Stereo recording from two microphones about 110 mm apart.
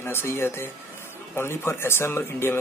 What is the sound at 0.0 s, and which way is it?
Speech, 20° left (ahead or behind).